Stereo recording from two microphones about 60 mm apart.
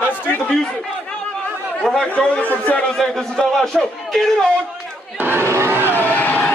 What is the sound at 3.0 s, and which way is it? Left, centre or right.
A man's voice, centre.